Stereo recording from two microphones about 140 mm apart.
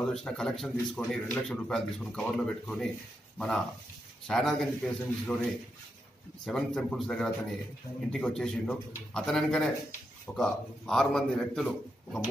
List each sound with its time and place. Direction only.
0.1 s a man's voice: 5° left (ahead or behind)
6.4 s a man's voice: 5° left (ahead or behind)